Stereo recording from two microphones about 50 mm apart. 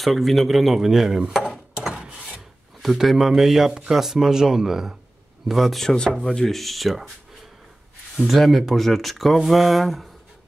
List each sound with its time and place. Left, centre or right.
0.0 s speech: centre
2.0 s filing: right
2.8 s speech: centre
5.8 s speech: centre
8.3 s speech: centre